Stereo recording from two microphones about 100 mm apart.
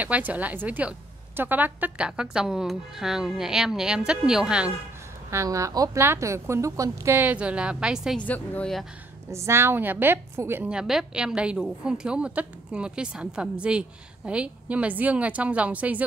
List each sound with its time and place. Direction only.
0.0 s a woman's voice: 15° right (ahead or behind)
5.3 s a woman's voice: 30° right (ahead or behind)
7.2 s a woman's voice: 15° right (ahead or behind)
8.3 s speech: 15° left (ahead or behind)
9.3 s a woman's voice: 25° right (ahead or behind)
10.7 s a woman's voice: 5° right (ahead or behind)